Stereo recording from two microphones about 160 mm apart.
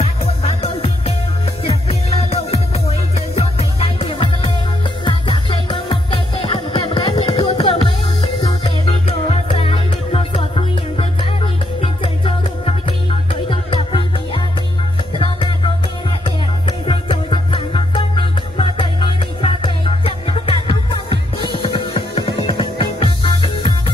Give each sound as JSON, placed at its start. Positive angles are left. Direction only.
{"t": 0.0, "sound": "music", "side_deg": 40}
{"t": 15.1, "sound": "music", "side_deg": 30}